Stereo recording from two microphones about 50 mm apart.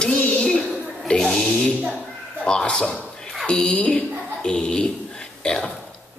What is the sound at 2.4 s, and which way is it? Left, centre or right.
A woman's voice, centre.